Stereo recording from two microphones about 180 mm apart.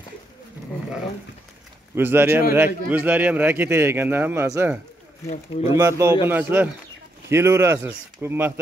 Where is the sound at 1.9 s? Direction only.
10° right (ahead or behind).